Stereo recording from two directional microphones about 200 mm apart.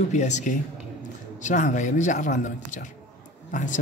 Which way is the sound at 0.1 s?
35° left (ahead or behind).